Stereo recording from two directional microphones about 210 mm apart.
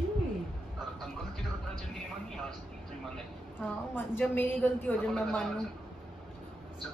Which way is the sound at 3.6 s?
10° left (ahead or behind).